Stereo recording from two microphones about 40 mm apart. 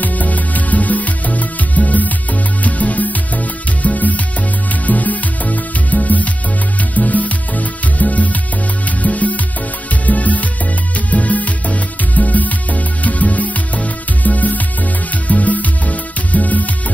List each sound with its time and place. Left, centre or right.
0.0 s music: left